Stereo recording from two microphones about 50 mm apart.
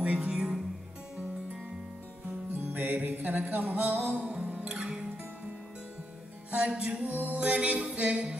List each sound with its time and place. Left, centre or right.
0.0 s music: right
0.3 s music: centre
2.5 s music: right
6.5 s music: centre
7.1 s music: right
7.3 s music: right